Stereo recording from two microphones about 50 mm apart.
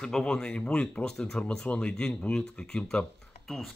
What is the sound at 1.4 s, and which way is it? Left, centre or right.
Speech, left.